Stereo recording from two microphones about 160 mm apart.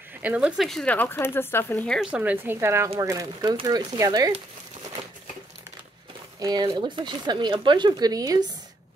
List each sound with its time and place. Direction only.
0.2 s speech: 10° right (ahead or behind); by 2.0 s 10° left (ahead or behind)
2.0 s a woman's voice: 5° right (ahead or behind); by 4.3 s 25° right (ahead or behind)
6.4 s speech: 25° right (ahead or behind)